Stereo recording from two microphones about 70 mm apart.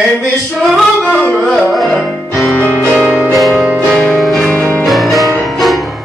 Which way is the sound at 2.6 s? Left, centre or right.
Right.